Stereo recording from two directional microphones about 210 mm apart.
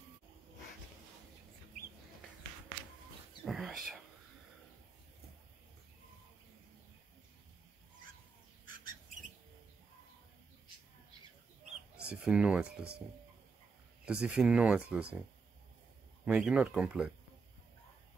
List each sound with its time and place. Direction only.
3.4 s speech: centre (ahead or behind)
8.6 s bird: 40° right (ahead or behind)
12.0 s speech: 5° right (ahead or behind)
14.0 s speech: 5° right (ahead or behind)
16.3 s speech: 5° right (ahead or behind)